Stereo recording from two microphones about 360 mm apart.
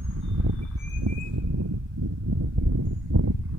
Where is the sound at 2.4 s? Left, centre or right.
Right.